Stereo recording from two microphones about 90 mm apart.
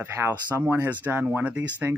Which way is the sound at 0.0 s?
25° right (ahead or behind).